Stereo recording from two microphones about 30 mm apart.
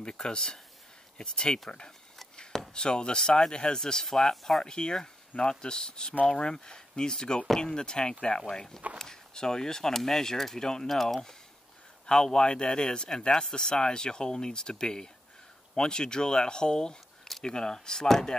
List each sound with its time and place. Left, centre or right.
0.0 s speech: left
2.7 s speech: left; by 4.6 s centre
4.6 s speech: left
10.9 s speech: centre
12.1 s speech: left